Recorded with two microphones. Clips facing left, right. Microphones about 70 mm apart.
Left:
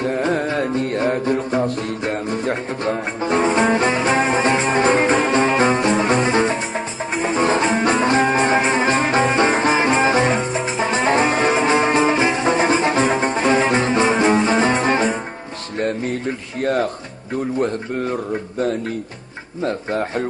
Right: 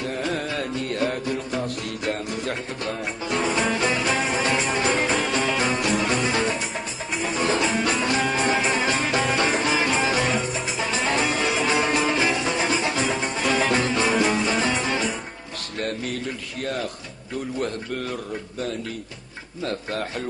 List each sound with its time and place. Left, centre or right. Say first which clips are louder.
0.0 s music: left 7 dB; left
15.8 s a sound: left 7 dB; left
19.6 s speech: left 6 dB; left